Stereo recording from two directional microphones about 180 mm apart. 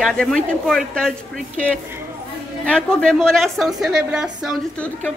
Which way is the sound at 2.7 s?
5° left (ahead or behind).